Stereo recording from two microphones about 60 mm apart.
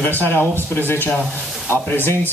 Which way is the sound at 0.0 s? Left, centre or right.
Left.